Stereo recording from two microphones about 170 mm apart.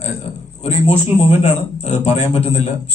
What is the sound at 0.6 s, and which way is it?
A man's voice, 40° left (ahead or behind).